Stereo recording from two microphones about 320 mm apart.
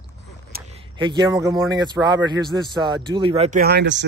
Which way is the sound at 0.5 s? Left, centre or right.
Right.